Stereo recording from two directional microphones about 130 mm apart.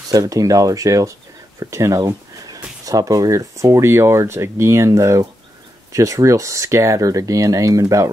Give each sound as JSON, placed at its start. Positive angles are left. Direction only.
{"t": 0.1, "sound": "speech", "side_deg": -25}